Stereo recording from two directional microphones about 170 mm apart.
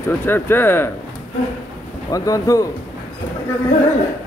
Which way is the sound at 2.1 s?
20° left (ahead or behind).